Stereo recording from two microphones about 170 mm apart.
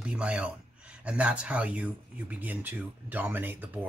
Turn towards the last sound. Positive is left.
turn(degrees=-10)  # may be behind; listen again after turning